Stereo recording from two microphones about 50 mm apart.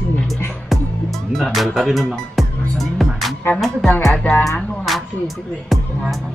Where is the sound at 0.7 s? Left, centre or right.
Centre.